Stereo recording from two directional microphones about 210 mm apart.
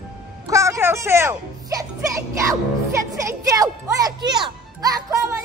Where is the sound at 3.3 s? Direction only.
15° right (ahead or behind).